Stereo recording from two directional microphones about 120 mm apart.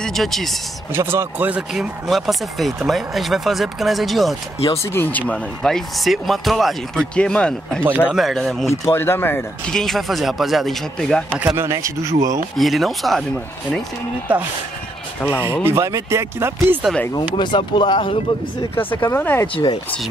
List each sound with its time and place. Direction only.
0.0 s speech: centre (ahead or behind)
0.9 s speech: 20° right (ahead or behind)
1.7 s speech: centre (ahead or behind)
4.6 s speech: 20° left (ahead or behind)
5.3 s speech: 5° left (ahead or behind)
8.6 s speech: 20° left (ahead or behind)
9.7 s speech: 5° left (ahead or behind)
11.2 s speech: 15° right (ahead or behind)
12.5 s speech: centre (ahead or behind)
15.6 s speech: 25° right (ahead or behind)
17.1 s speech: 40° left (ahead or behind)
19.1 s speech: 15° left (ahead or behind)
19.5 s speech: 40° left (ahead or behind)